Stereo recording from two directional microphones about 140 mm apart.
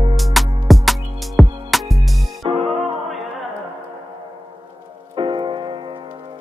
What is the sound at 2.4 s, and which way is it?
Music, 45° right (ahead or behind).